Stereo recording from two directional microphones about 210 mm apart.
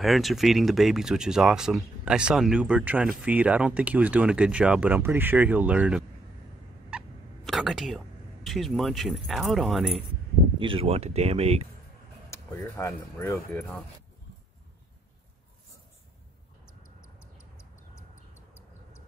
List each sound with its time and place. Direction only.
0.0 s speech: centre (ahead or behind)
6.9 s turkey: centre (ahead or behind)
8.5 s speech: centre (ahead or behind)
10.6 s speech: 25° right (ahead or behind)
12.3 s speech: 15° left (ahead or behind)
18.3 s a sound: 10° left (ahead or behind)